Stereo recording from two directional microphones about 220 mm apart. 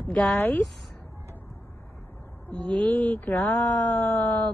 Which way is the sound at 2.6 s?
5° left (ahead or behind).